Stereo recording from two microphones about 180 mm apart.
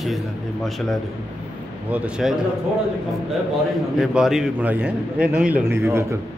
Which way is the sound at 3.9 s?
Centre (ahead or behind).